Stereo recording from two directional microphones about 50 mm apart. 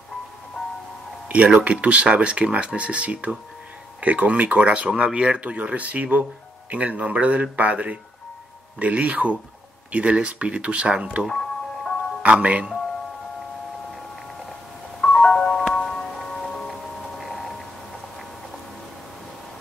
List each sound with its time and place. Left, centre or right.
1.3 s speech: right
11.2 s music: centre
12.2 s speech: right
15.0 s music: centre